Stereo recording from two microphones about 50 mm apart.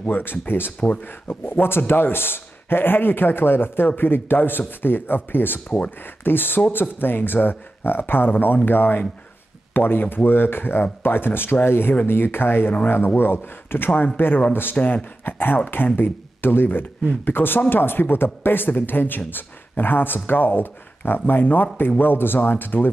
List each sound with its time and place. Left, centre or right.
0.0 s a man's voice: left